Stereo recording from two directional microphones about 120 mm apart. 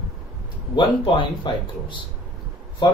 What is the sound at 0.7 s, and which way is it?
Speech, 45° left (ahead or behind).